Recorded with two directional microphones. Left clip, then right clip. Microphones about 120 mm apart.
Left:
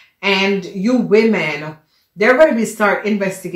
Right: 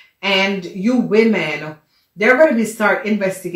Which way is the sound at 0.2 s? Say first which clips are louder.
Left 1 dB; 40° left (ahead or behind).